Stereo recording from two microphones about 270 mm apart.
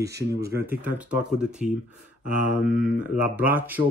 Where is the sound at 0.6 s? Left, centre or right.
Centre.